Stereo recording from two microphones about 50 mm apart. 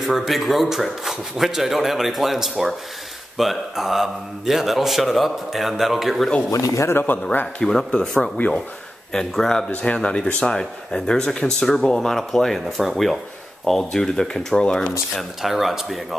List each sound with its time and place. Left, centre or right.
0.0 s a man's voice: centre
6.5 s speech: left
6.9 s speech: left
7.2 s a man's voice: left
7.6 s speech: centre
9.7 s a man's voice: left
15.4 s a man's voice: centre